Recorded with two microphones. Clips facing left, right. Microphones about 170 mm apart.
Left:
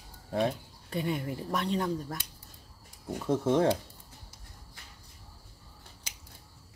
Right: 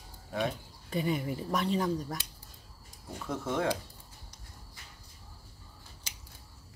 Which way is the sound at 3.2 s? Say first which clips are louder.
Left 6 dB; 30° left (ahead or behind).